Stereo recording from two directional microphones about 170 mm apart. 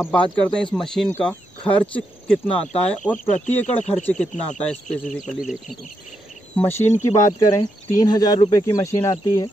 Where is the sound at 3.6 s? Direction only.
40° left (ahead or behind).